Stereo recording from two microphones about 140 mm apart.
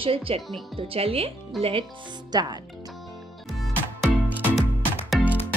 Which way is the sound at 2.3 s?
30° right (ahead or behind).